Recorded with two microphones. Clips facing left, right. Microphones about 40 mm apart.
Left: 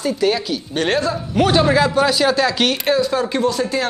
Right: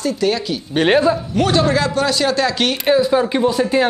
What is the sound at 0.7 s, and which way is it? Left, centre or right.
Speech, centre.